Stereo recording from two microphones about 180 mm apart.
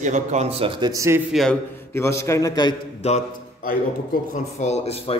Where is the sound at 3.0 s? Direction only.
35° left (ahead or behind).